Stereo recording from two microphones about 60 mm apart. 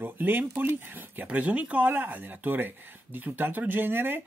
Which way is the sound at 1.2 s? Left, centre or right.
Right.